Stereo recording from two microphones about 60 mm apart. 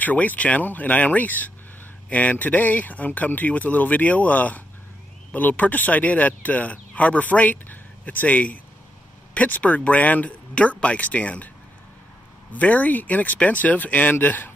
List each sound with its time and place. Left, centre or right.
0.0 s speech: left
12.5 s speech: left